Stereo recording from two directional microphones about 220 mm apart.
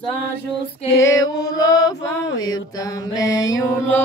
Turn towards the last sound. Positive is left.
turn(degrees=15)  # may be behind; listen again after turning